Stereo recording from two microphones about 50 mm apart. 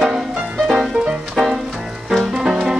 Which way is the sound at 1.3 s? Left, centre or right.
Centre.